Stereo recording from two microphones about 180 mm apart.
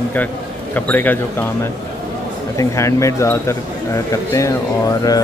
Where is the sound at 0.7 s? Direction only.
10° left (ahead or behind).